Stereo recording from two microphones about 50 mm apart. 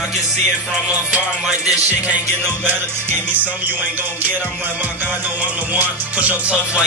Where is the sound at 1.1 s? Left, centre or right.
Centre.